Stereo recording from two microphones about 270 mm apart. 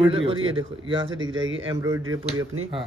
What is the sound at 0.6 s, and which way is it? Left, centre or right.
Speech, centre.